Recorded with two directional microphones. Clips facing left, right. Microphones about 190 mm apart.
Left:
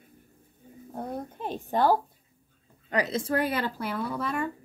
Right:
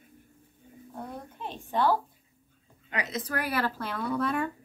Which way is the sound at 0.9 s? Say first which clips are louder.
Left 6 dB; 45° left (ahead or behind).